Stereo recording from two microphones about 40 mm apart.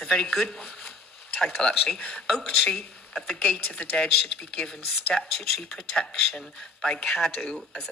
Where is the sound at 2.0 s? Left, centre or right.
Left.